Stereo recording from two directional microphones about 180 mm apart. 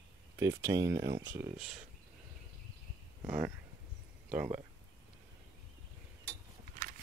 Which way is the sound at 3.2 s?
10° right (ahead or behind).